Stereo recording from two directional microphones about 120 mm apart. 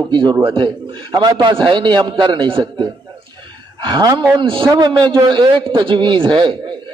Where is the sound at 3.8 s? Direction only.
40° right (ahead or behind).